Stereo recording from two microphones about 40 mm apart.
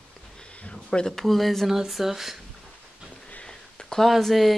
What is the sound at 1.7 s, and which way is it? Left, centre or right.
Speech, centre.